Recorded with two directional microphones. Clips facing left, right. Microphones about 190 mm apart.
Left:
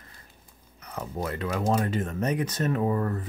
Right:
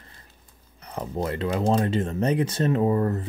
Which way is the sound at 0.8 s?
30° right (ahead or behind).